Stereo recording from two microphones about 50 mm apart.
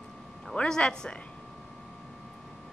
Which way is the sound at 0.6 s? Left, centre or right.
Centre.